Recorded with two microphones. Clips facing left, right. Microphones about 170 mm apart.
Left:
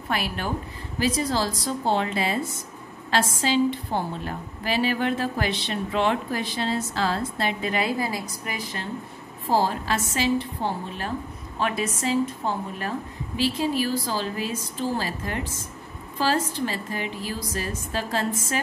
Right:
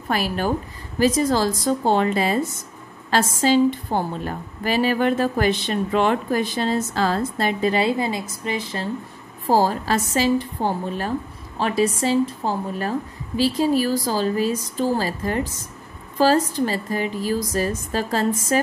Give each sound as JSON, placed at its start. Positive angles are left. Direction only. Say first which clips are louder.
{"t": 0.1, "sound": "a woman's voice", "louder": "right 6 dB", "side_deg": -40}
{"t": 7.7, "sound": "a woman's voice", "louder": "right 5 dB", "side_deg": -25}
{"t": 9.5, "sound": "a woman's voice", "louder": "right 4 dB", "side_deg": -40}